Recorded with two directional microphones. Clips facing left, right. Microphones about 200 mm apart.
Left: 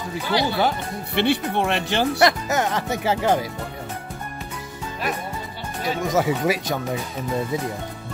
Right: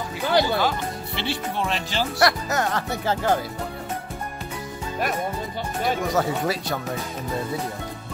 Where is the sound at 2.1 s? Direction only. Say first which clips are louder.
Right 1 dB; 20° left (ahead or behind).